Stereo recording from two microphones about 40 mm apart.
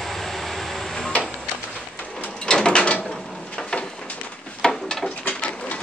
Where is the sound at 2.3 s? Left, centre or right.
Left.